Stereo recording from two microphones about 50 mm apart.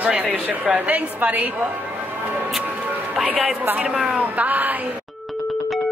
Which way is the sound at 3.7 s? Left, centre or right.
Centre.